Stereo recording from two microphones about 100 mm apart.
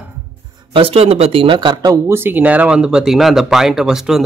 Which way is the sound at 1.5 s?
50° right (ahead or behind).